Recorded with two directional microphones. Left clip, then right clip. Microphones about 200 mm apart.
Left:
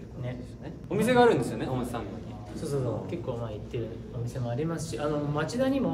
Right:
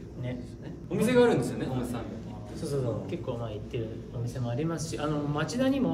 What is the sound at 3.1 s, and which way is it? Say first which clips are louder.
A man's voice: even; 10° left (ahead or behind).